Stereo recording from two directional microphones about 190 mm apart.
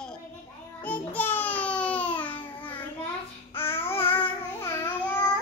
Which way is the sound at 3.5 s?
10° left (ahead or behind).